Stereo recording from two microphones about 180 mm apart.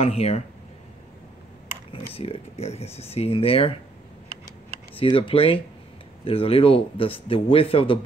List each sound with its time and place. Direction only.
0.0 s a man's voice: 35° left (ahead or behind)
2.1 s a man's voice: 30° left (ahead or behind)
4.9 s a man's voice: 30° left (ahead or behind)